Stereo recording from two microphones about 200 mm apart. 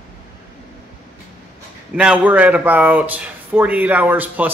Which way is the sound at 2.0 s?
5° right (ahead or behind).